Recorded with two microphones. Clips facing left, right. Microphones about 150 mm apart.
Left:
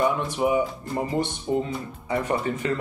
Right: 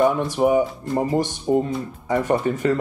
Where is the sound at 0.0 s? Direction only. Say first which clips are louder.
Right 5 dB; 45° right (ahead or behind).